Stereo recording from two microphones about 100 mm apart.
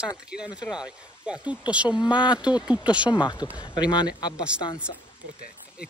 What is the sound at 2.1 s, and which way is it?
Speech, 50° left (ahead or behind).